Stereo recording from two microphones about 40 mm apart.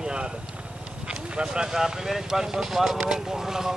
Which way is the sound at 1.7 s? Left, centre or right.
Centre.